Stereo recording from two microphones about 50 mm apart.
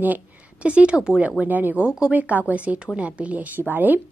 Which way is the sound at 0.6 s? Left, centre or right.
Right.